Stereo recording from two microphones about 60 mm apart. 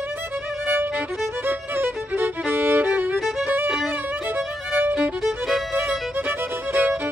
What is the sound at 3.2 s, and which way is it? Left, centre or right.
Violin, centre.